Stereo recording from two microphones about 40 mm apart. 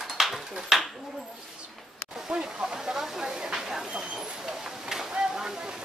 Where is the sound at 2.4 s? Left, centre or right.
Centre.